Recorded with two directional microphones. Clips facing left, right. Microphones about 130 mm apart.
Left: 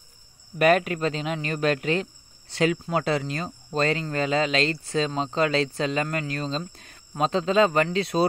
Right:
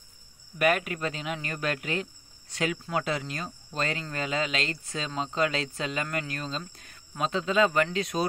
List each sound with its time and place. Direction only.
0.6 s speech: 30° left (ahead or behind)